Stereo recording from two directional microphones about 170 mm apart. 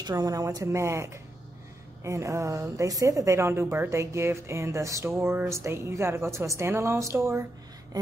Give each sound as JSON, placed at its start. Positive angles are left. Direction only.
{"t": 0.0, "sound": "a woman's voice", "side_deg": -20}